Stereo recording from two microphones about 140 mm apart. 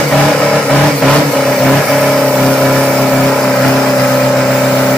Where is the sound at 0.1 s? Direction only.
5° left (ahead or behind).